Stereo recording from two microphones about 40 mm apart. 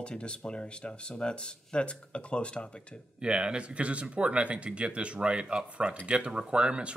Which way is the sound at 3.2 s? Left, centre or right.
Right.